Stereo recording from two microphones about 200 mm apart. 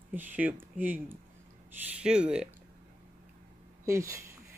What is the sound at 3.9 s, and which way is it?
Speech, 15° right (ahead or behind).